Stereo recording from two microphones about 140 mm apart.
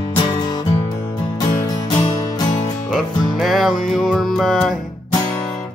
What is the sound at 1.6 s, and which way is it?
Music, 35° left (ahead or behind).